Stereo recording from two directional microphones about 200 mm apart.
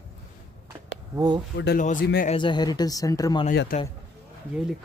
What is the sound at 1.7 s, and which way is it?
Speech, 40° left (ahead or behind).